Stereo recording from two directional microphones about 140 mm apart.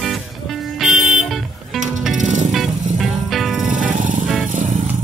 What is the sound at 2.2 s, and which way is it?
Music, 60° right (ahead or behind).